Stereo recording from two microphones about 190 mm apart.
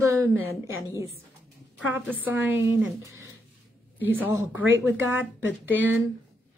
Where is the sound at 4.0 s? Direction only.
10° right (ahead or behind).